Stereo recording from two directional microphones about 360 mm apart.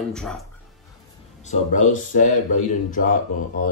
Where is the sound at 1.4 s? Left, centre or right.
Centre.